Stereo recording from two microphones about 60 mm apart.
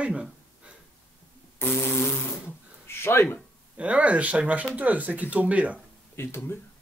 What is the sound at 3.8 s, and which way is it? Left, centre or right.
Speech, right.